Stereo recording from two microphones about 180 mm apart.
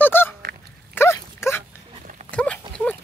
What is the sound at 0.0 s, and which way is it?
Honk, 10° left (ahead or behind).